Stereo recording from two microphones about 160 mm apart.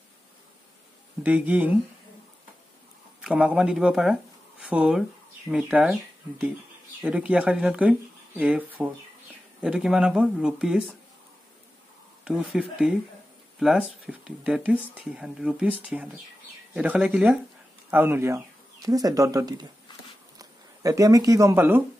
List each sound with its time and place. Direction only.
1.2 s speech: 10° right (ahead or behind)
3.2 s speech: 5° right (ahead or behind)
7.0 s speech: 5° right (ahead or behind)
12.3 s speech: 5° right (ahead or behind)